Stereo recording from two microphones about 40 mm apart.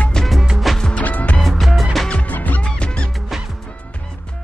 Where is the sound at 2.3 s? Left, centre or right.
Left.